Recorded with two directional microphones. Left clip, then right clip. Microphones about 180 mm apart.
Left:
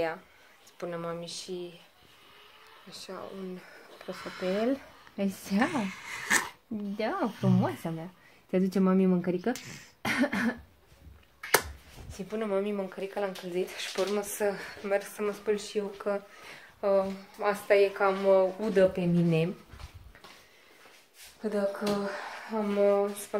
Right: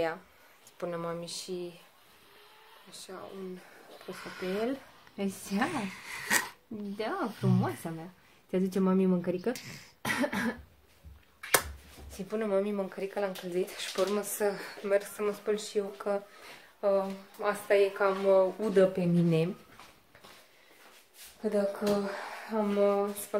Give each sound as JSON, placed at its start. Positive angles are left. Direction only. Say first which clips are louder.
{"t": 0.7, "sound": "speech", "louder": "even", "side_deg": -15}
{"t": 4.1, "sound": "speech", "louder": "left 4 dB", "side_deg": -15}
{"t": 5.1, "sound": "speech", "louder": "left 3 dB", "side_deg": 25}
{"t": 5.7, "sound": "speech", "louder": "left 2 dB", "side_deg": -10}
{"t": 7.0, "sound": "speech", "louder": "left 3 dB", "side_deg": 30}
{"t": 9.5, "sound": "speech", "louder": "left 1 dB", "side_deg": 0}
{"t": 10.0, "sound": "cough", "louder": "left 2 dB", "side_deg": 15}
{"t": 12.3, "sound": "speech", "louder": "right 1 dB", "side_deg": -5}
{"t": 16.8, "sound": "speech", "louder": "left 2 dB", "side_deg": 25}
{"t": 17.9, "sound": "speech", "louder": "left 1 dB", "side_deg": 0}
{"t": 21.4, "sound": "speech", "louder": "even", "side_deg": -15}